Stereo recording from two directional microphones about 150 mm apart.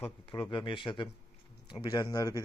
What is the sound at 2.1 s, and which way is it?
Speech, 20° left (ahead or behind).